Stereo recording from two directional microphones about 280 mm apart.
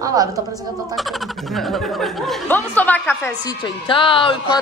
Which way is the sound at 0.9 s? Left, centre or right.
Centre.